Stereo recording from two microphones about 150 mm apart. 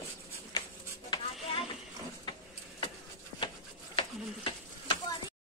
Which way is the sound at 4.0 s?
35° left (ahead or behind).